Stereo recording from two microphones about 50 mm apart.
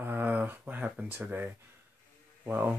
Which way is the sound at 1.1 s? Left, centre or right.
Right.